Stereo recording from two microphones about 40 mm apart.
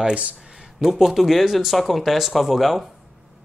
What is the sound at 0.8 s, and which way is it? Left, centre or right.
Speech, centre.